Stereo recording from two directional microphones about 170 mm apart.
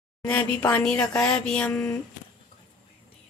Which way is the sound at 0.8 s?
5° left (ahead or behind).